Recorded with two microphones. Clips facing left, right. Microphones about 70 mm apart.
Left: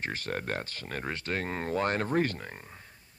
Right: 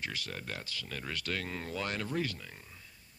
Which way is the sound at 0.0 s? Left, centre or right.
Left.